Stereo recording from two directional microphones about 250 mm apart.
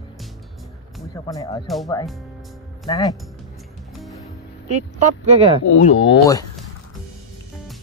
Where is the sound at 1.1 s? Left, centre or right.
Centre.